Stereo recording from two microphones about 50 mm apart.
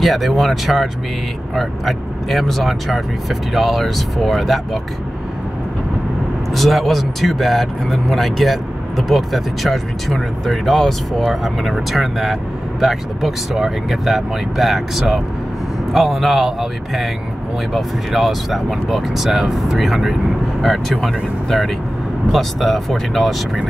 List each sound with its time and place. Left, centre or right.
0.0 s speech: centre
6.5 s speech: centre